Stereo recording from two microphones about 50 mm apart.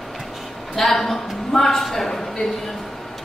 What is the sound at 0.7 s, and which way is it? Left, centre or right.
Speech, centre.